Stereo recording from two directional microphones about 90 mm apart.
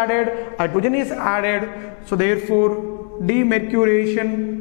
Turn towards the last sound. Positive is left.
turn(degrees=15)  # may be behind; listen again after turning